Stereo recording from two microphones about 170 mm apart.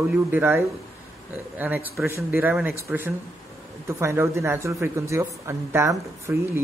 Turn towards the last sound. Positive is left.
turn(degrees=-15)  # may be behind; listen again after turning